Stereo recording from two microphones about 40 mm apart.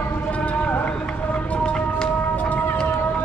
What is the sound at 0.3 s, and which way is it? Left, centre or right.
Run, left.